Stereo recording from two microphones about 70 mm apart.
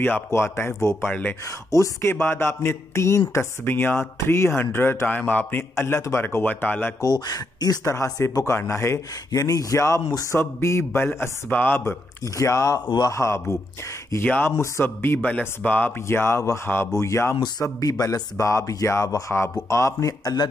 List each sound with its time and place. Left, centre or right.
0.0 s speech: left
1.7 s speech: left
6.4 s speech: left
7.0 s speech: left
7.8 s speech: left
9.3 s speech: left
12.4 s speech: left
15.2 s speech: left
17.7 s speech: left